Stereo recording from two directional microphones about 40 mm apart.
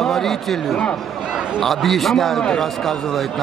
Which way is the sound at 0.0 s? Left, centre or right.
Centre.